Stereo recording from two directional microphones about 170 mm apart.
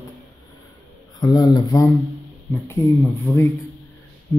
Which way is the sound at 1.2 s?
20° left (ahead or behind).